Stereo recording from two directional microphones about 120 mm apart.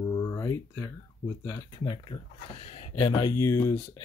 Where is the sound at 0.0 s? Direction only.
25° left (ahead or behind).